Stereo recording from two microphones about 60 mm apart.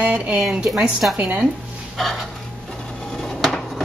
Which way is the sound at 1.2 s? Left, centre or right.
Right.